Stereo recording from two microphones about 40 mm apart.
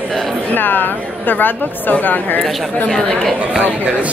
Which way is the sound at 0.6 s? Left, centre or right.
Left.